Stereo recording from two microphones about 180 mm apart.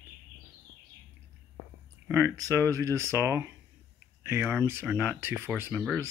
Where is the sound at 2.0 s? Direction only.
15° right (ahead or behind).